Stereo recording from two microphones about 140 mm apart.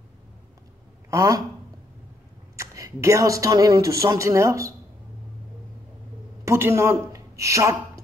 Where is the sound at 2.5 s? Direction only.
20° right (ahead or behind).